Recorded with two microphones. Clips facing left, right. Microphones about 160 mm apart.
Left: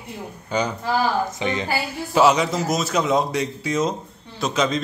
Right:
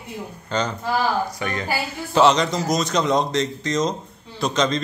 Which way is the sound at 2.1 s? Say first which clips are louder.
Even; 5° left (ahead or behind).